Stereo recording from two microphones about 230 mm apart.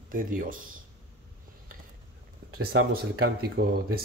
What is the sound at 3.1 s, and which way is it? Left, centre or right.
Speech, right.